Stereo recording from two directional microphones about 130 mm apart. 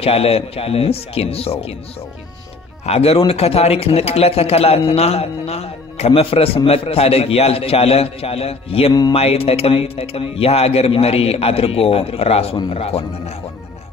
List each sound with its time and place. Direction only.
0.0 s speech: 50° left (ahead or behind)
2.8 s speech: 50° left (ahead or behind)